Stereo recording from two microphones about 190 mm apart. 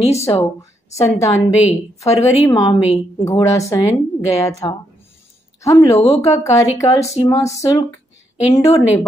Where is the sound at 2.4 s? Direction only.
20° left (ahead or behind).